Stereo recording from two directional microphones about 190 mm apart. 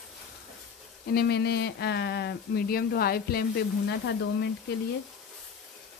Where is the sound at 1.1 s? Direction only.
55° left (ahead or behind).